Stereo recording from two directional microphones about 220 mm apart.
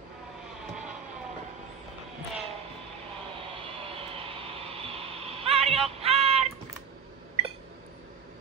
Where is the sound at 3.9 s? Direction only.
25° right (ahead or behind).